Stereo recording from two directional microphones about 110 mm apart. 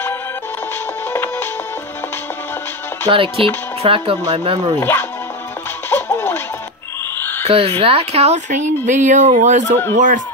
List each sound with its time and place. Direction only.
1.1 s music: 20° left (ahead or behind)
3.1 s speech: 55° right (ahead or behind)
4.7 s speech: 20° left (ahead or behind)
5.9 s music: 20° left (ahead or behind)
7.4 s speech: 65° right (ahead or behind); by 9.8 s 90° right